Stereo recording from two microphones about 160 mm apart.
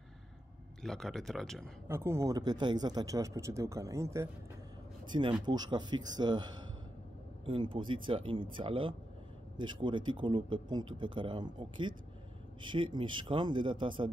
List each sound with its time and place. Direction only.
0.8 s speech: centre (ahead or behind)
1.9 s speech: 15° right (ahead or behind)
5.0 s speech: 30° right (ahead or behind)
7.4 s speech: 30° right (ahead or behind)